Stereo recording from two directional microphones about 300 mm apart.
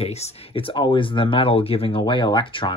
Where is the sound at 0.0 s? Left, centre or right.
Left.